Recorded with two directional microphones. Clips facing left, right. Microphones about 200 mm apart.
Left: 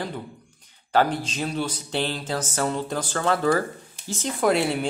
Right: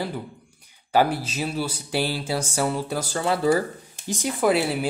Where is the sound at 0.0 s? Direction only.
10° right (ahead or behind).